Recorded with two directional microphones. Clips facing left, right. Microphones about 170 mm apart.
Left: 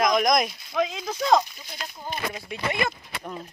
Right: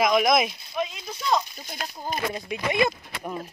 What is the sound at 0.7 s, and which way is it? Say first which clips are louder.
Speech: left 5 dB; 90° left.